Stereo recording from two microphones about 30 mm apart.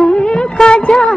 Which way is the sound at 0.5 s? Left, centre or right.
Centre.